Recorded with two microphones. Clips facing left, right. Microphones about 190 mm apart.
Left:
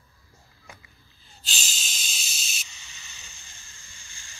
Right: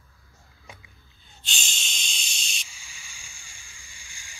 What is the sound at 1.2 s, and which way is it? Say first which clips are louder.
Hiss: even; centre (ahead or behind).